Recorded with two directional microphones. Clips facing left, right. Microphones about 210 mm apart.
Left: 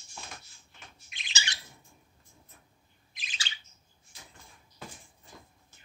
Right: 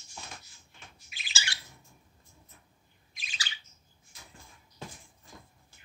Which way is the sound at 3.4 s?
25° left (ahead or behind).